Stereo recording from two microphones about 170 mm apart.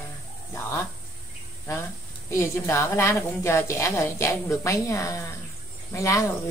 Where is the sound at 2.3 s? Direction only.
15° left (ahead or behind).